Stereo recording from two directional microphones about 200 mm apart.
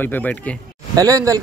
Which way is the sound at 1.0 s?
15° right (ahead or behind).